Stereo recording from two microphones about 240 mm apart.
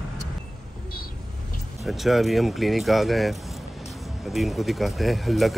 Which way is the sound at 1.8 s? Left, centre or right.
Centre.